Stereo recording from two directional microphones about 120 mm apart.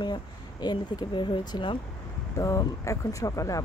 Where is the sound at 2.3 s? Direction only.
25° left (ahead or behind).